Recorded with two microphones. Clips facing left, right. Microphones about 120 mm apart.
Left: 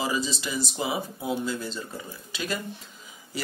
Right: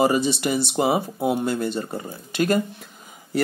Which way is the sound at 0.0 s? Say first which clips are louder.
Right 9 dB; 65° right (ahead or behind).